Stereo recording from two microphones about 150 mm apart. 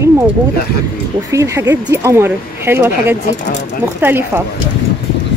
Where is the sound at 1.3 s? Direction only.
20° right (ahead or behind).